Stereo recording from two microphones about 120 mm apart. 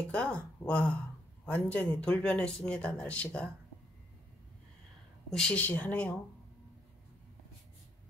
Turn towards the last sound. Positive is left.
turn(degrees=10)  # may be behind; listen again after turning